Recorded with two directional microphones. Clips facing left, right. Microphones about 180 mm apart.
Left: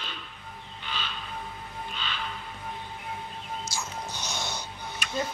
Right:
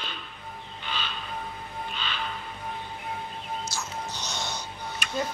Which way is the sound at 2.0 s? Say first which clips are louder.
Right 1 dB; 70° right (ahead or behind).